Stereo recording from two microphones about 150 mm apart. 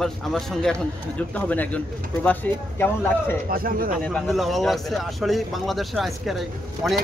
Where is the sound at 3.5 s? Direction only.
75° right (ahead or behind).